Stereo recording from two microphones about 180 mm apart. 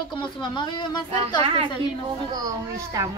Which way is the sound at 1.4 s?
30° right (ahead or behind).